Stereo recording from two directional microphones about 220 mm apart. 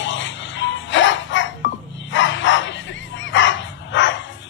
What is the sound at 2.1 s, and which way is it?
Bow-wow, 55° left (ahead or behind).